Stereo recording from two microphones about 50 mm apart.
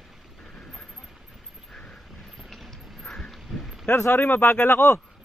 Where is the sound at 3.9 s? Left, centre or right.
Left.